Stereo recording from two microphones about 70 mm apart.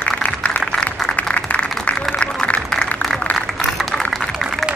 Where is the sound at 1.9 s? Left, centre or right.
Centre.